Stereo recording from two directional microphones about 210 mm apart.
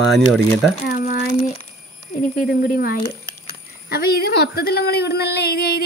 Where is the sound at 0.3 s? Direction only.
Centre (ahead or behind).